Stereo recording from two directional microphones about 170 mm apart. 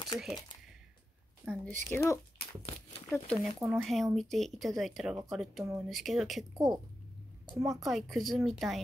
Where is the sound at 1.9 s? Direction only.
15° left (ahead or behind).